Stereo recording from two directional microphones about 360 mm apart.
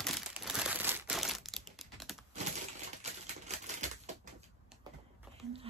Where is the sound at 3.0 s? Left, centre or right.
Centre.